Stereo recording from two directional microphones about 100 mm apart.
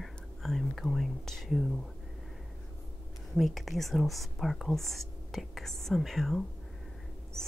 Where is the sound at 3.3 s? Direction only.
Centre (ahead or behind).